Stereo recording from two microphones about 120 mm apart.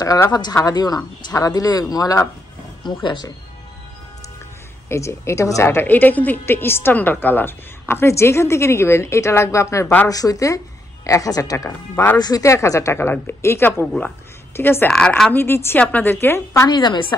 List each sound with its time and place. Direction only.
0.0 s speech: 30° left (ahead or behind)
4.8 s a woman's voice: 25° left (ahead or behind)
11.9 s speech: 15° left (ahead or behind)
12.2 s a woman's voice: 30° left (ahead or behind)
14.9 s speech: 5° left (ahead or behind)
15.3 s a woman's voice: 20° left (ahead or behind)
16.6 s speech: 35° left (ahead or behind)